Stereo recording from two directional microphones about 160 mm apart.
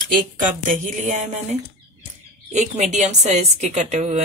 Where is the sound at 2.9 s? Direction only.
45° right (ahead or behind).